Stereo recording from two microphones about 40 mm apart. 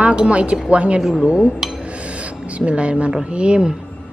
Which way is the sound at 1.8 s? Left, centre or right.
Right.